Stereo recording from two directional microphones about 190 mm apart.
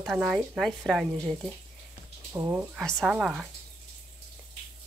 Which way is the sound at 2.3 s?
15° right (ahead or behind).